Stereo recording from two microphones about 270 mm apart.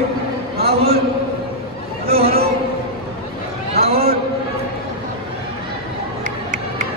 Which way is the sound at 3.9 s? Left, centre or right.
Right.